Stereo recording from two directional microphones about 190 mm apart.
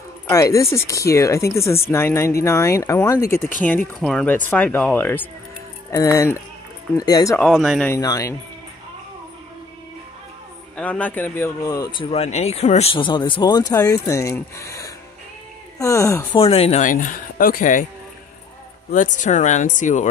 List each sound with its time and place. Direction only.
0.3 s speech: 15° left (ahead or behind)
7.3 s speech: centre (ahead or behind)
7.9 s speech: 15° left (ahead or behind)
10.8 s speech: 10° left (ahead or behind)
16.3 s speech: 30° left (ahead or behind)
18.9 s speech: 40° left (ahead or behind)